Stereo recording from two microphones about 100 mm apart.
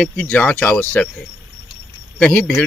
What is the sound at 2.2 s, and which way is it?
Speech, 15° left (ahead or behind).